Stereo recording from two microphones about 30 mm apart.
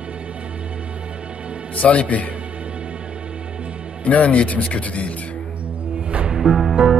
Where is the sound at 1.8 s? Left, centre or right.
Left.